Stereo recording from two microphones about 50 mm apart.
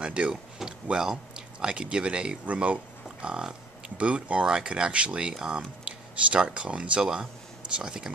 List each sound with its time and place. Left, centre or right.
0.0 s speech: right